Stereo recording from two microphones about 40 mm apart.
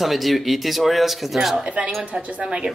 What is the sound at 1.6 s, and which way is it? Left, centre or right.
Speech, right.